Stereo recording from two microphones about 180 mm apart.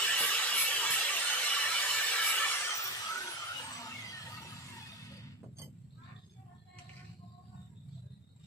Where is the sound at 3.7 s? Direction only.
20° left (ahead or behind).